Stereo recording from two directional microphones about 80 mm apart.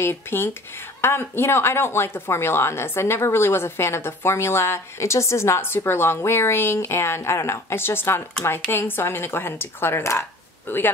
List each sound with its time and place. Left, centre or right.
0.0 s speech: left